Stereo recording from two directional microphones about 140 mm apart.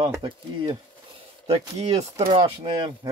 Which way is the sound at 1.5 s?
50° right (ahead or behind).